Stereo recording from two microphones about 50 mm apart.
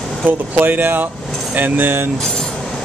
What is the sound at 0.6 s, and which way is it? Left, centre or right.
Speech, right.